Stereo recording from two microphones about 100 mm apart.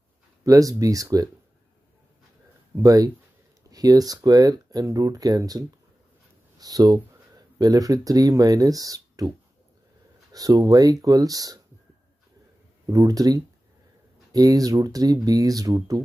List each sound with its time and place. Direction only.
0.4 s speech: 35° right (ahead or behind)
2.8 s speech: 35° right (ahead or behind)
10.3 s speech: 40° right (ahead or behind)
12.9 s speech: 40° right (ahead or behind)